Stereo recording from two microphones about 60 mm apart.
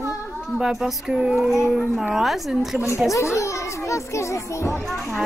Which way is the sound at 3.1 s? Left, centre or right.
Left.